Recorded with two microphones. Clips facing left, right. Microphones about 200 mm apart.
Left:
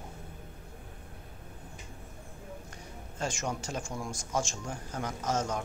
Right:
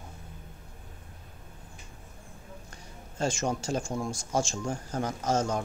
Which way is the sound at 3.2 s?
30° right (ahead or behind).